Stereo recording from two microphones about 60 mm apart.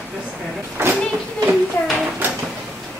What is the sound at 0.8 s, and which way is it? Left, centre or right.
Speech, right.